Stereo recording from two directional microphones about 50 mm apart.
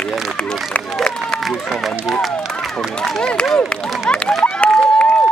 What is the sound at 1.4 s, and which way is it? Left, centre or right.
Run, centre.